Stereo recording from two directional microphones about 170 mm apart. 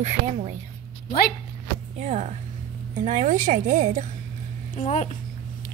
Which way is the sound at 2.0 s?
40° right (ahead or behind).